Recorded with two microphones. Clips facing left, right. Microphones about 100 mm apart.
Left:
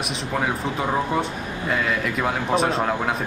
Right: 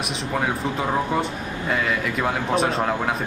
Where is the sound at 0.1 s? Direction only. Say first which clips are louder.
Even; centre (ahead or behind).